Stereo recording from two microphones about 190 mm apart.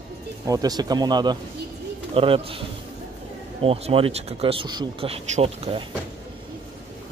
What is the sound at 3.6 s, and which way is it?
Speech, 30° right (ahead or behind).